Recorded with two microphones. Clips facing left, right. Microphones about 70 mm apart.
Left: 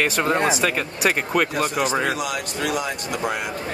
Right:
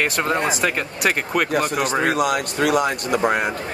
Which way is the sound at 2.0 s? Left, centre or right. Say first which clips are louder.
Right 5 dB; right.